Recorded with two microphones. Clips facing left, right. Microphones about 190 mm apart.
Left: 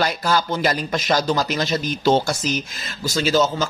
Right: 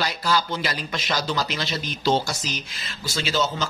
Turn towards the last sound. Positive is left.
turn(degrees=45)  # may be behind; listen again after turning